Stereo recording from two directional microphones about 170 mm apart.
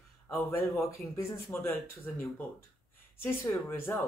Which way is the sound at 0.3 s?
15° left (ahead or behind).